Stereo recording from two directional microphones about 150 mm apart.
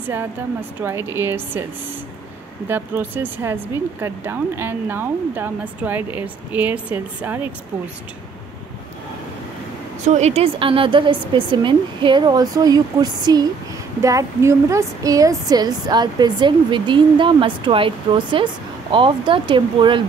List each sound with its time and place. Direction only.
0.1 s speech: 15° right (ahead or behind)
2.7 s speech: 10° right (ahead or behind)
10.0 s speech: 50° right (ahead or behind); by 20.0 s 35° right (ahead or behind)